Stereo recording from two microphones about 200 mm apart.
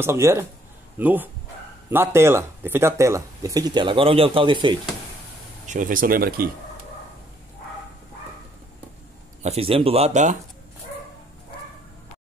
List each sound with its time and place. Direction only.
0.0 s speech: 15° right (ahead or behind)
5.7 s speech: 40° right (ahead or behind)
9.4 s speech: 30° right (ahead or behind)